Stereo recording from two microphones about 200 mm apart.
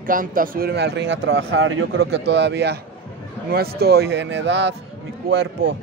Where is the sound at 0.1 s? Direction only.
45° right (ahead or behind).